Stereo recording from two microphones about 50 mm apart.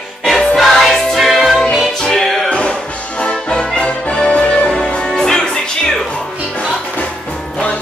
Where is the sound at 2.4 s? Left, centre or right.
Left.